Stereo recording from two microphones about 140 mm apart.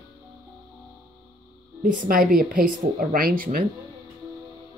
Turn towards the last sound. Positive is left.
turn(degrees=-90)